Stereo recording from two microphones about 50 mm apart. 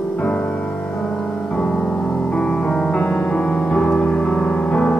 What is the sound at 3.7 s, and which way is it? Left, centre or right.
Music, left.